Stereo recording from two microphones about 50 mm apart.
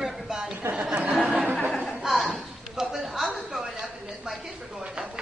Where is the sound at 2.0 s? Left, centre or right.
Centre.